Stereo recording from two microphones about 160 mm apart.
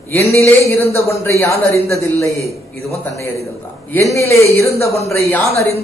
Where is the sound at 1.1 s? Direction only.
15° left (ahead or behind).